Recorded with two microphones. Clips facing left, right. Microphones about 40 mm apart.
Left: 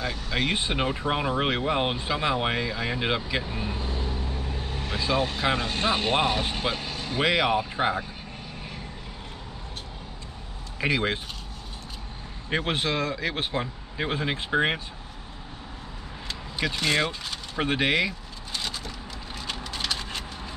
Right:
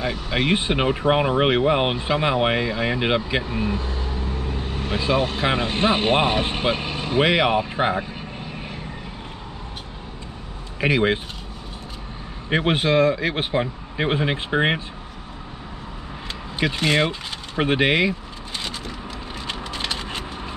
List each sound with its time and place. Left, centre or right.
0.0 s speech: right
4.7 s speech: right
7.2 s speech: right
10.8 s speech: right
12.4 s speech: right
16.5 s speech: right
17.6 s vehicle: right